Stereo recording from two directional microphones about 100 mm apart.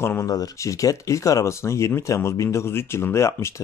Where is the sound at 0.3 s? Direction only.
35° left (ahead or behind).